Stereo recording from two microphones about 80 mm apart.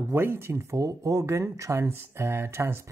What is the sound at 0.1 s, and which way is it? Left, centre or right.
Speech, right.